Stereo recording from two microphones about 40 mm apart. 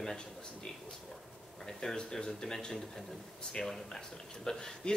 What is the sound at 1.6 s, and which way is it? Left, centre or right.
Speech, centre.